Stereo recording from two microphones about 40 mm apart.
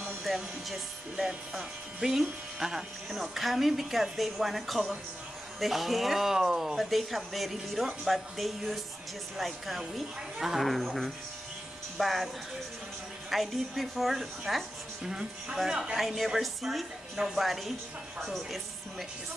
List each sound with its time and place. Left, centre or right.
0.2 s a woman's voice: centre
10.6 s speech: centre
13.3 s speech: centre
16.0 s a woman's voice: centre